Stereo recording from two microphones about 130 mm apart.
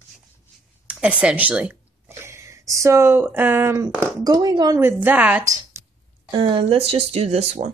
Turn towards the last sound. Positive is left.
turn(degrees=-55)  # may be behind; listen again after turning